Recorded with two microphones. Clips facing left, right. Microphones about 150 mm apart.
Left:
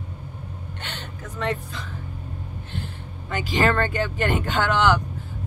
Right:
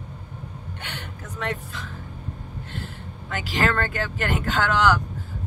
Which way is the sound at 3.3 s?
Centre (ahead or behind).